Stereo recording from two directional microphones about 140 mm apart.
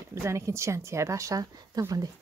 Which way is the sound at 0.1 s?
20° right (ahead or behind).